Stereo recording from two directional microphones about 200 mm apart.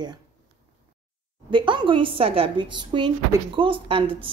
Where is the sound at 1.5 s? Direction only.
25° right (ahead or behind).